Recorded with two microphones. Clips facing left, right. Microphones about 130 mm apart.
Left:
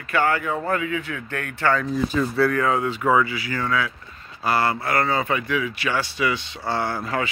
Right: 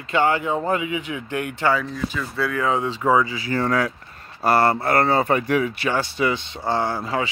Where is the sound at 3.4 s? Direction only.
35° right (ahead or behind).